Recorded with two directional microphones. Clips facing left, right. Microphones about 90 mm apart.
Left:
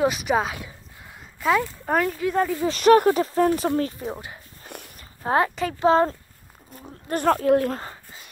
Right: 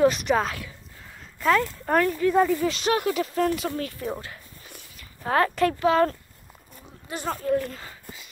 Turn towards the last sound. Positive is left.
turn(degrees=65)  # may be behind; listen again after turning